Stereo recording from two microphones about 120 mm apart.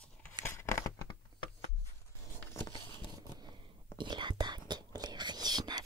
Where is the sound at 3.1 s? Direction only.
35° right (ahead or behind).